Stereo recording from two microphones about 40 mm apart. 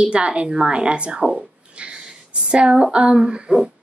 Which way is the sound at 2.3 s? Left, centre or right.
Right.